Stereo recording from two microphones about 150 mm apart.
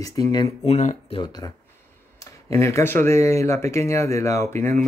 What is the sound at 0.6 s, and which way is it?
Speech, 50° left (ahead or behind).